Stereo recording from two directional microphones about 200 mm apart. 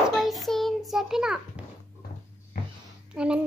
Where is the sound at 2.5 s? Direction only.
45° left (ahead or behind).